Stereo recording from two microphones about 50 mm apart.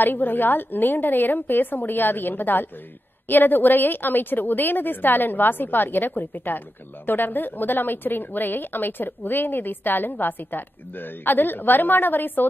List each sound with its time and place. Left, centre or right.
0.0 s a woman's voice: left